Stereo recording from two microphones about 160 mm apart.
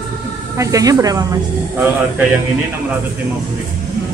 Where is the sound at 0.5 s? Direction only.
20° right (ahead or behind).